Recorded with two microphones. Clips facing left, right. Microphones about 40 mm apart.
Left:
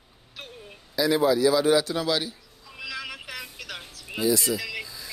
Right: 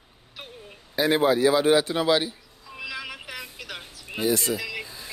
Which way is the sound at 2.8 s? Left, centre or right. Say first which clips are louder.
Even; centre.